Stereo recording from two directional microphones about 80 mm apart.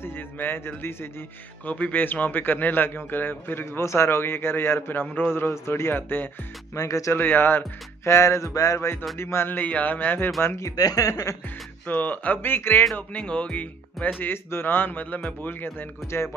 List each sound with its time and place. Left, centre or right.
0.0 s a man's voice: left
6.7 s speech: left
7.2 s speech: left
9.2 s a man's voice: left
10.4 s speech: left
10.8 s speech: left
11.8 s a man's voice: left
12.9 s speech: centre
14.2 s a man's voice: left